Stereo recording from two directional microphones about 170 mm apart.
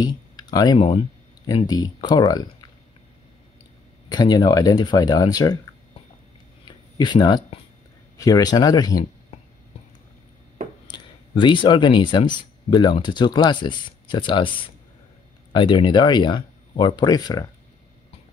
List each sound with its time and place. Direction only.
0.0 s speech: 25° left (ahead or behind)
4.1 s speech: 25° left (ahead or behind)
7.0 s speech: 25° left (ahead or behind)
10.9 s speech: 25° left (ahead or behind)